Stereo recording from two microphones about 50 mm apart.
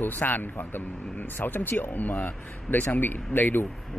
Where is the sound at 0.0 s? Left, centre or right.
Left.